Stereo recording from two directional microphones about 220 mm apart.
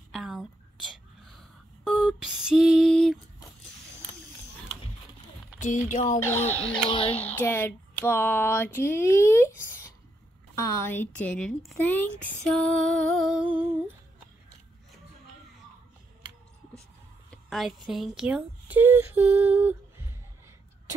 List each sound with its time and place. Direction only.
0.1 s whispering: centre (ahead or behind)
1.9 s female singing: centre (ahead or behind)
5.6 s speech: 35° left (ahead or behind)
6.1 s a sound: 10° left (ahead or behind)
6.9 s speech: 25° left (ahead or behind)
7.3 s a sound: 10° left (ahead or behind)
10.6 s speech: 10° left (ahead or behind)
17.5 s speech: centre (ahead or behind)